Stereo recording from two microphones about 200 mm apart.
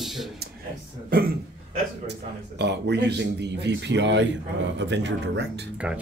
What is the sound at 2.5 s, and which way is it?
Speech, 55° right (ahead or behind).